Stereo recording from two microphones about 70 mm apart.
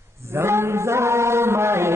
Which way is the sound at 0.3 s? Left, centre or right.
Right.